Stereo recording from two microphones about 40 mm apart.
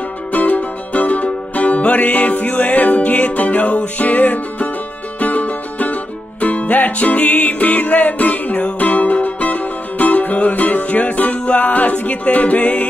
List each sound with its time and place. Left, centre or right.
0.3 s music: left